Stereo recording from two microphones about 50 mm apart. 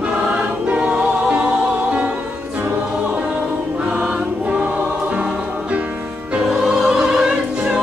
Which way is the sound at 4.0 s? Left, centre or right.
Right.